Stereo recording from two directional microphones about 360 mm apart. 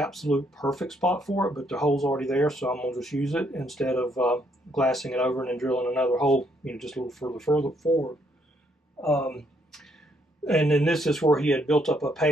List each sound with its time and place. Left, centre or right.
0.0 s speech: centre